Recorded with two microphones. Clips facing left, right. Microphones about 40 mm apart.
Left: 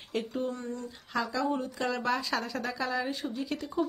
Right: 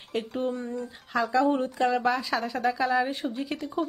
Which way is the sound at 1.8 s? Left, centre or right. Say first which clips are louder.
Right 7 dB; centre.